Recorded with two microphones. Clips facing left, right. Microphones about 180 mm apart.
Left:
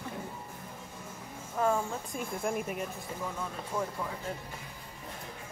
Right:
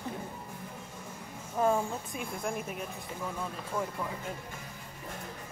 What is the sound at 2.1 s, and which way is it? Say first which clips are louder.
Speech: left 2 dB; centre (ahead or behind).